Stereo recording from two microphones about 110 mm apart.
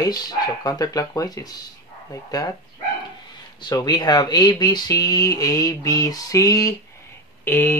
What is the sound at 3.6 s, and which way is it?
Speech, 40° left (ahead or behind).